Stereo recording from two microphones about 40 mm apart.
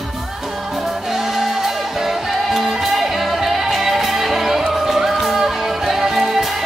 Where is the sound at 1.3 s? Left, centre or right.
Centre.